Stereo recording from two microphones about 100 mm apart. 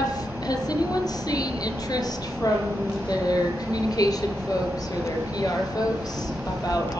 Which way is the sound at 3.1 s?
40° left (ahead or behind).